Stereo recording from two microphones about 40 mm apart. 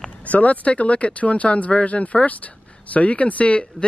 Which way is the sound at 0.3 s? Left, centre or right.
Left.